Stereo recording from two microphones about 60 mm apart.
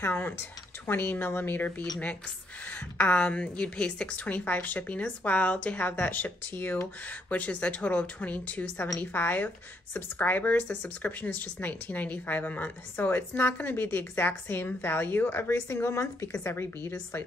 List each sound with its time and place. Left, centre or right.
0.0 s a woman's voice: left
16.4 s speech: left